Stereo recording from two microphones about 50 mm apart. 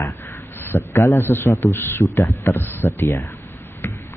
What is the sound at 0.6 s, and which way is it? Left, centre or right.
A man's voice, left.